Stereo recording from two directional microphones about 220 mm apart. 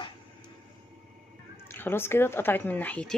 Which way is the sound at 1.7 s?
10° left (ahead or behind).